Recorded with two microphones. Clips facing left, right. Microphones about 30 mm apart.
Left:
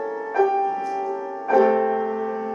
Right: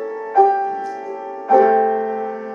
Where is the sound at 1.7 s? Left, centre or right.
Centre.